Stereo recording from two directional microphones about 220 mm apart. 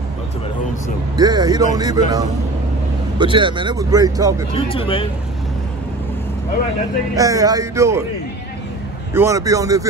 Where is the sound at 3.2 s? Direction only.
20° right (ahead or behind).